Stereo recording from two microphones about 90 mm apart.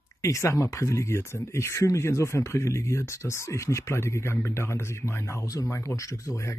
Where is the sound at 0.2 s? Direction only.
35° left (ahead or behind).